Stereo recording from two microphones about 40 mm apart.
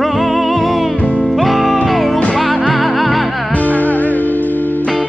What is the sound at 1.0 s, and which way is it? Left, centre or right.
Music, left.